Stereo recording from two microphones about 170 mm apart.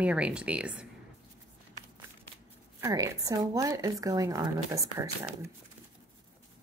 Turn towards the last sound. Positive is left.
turn(degrees=-20)  # may be behind; listen again after turning